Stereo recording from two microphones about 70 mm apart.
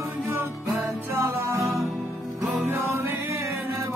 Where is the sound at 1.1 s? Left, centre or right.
Right.